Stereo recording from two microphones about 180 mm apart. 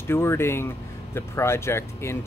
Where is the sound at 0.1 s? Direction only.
15° left (ahead or behind).